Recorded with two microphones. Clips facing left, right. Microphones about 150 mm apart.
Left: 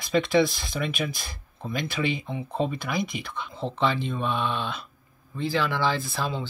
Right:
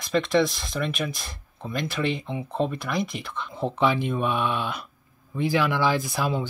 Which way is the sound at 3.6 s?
10° right (ahead or behind).